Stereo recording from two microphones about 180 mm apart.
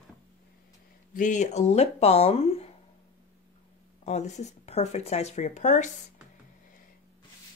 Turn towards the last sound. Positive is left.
turn(degrees=40)  # may be behind; listen again after turning